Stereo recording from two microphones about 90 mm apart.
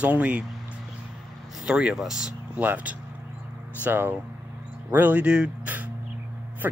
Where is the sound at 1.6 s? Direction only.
10° right (ahead or behind).